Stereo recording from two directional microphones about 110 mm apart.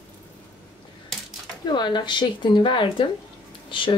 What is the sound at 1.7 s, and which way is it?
A woman's voice, 40° left (ahead or behind).